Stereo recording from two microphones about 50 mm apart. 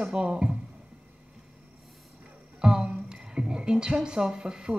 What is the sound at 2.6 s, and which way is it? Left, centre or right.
A woman's voice, centre.